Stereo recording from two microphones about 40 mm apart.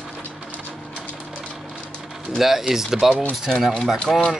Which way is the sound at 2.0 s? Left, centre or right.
Centre.